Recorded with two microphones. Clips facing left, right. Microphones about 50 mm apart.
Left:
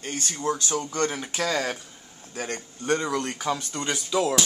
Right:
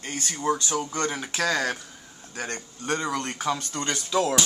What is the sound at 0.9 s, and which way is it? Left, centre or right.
Speech, centre.